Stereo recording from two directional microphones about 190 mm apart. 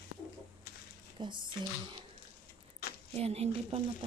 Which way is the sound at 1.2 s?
25° right (ahead or behind).